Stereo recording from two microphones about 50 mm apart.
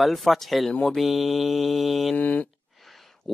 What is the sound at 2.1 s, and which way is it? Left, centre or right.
Speech, left.